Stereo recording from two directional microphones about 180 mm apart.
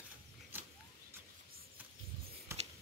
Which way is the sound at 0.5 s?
10° right (ahead or behind).